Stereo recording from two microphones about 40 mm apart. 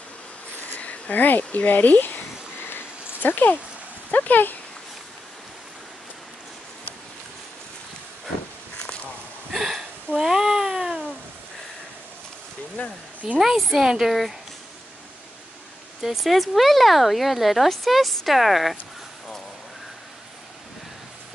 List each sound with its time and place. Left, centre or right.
0.6 s a sound: left
4.1 s speech: left
9.5 s a sound: centre
10.2 s cat: centre
12.8 s speech: left
13.2 s speech: centre
13.8 s speech: centre
16.0 s speech: centre